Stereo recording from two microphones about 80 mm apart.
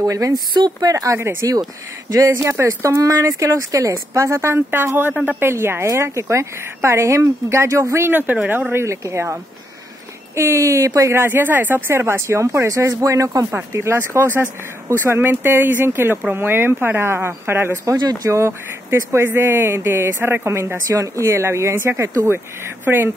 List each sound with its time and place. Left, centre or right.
0.0 s speech: right
2.6 s speech: right; by 5.4 s centre
5.4 s speech: right
8.1 s speech: right
8.7 s speech: right
11.1 s speech: right
17.9 s speech: right
18.3 s speech: right
22.8 s speech: right